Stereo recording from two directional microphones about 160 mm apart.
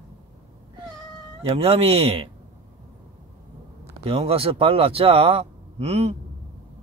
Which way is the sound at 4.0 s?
35° right (ahead or behind).